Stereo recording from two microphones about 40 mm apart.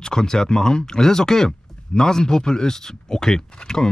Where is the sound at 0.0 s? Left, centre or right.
Centre.